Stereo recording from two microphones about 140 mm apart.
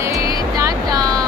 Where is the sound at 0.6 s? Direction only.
25° right (ahead or behind).